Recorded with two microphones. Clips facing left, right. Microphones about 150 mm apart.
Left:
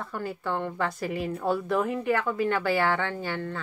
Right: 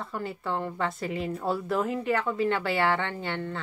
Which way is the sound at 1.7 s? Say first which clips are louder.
Even; centre (ahead or behind).